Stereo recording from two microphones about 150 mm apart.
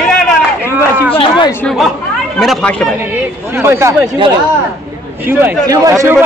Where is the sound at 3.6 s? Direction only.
15° right (ahead or behind).